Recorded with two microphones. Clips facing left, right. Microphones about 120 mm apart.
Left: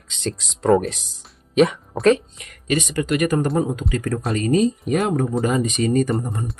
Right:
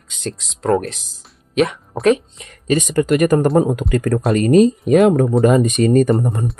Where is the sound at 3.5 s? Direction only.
65° right (ahead or behind).